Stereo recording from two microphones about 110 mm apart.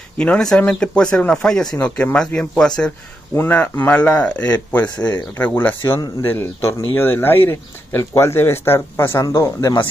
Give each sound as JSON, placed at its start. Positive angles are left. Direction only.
{"t": 0.2, "sound": "speech", "side_deg": 5}